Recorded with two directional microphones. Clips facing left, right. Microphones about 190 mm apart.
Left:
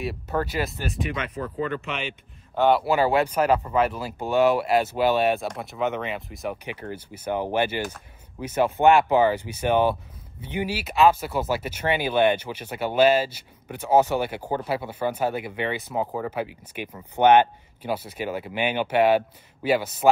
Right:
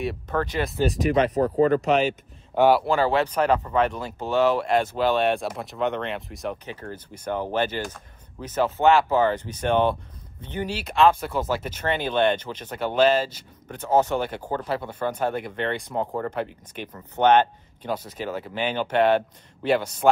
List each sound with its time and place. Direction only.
0.0 s speech: 5° left (ahead or behind)
0.9 s speech: 40° right (ahead or behind)
2.5 s speech: 10° right (ahead or behind)
2.8 s speech: 10° left (ahead or behind)
6.6 s speech: 15° left (ahead or behind)